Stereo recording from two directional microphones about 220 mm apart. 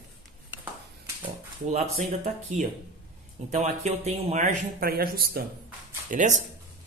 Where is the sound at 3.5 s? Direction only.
30° right (ahead or behind).